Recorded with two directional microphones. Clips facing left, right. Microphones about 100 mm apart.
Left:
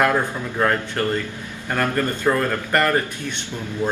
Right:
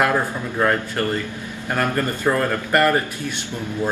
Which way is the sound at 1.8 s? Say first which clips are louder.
Even; 10° right (ahead or behind).